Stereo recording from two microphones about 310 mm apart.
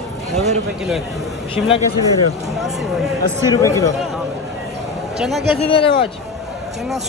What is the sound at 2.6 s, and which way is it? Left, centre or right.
Speech, centre.